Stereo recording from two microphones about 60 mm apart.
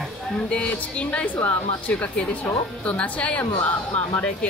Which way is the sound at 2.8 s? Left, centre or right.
Left.